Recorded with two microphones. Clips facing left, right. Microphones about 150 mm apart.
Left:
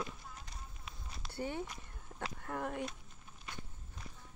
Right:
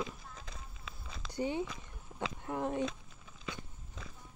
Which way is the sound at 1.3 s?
15° right (ahead or behind).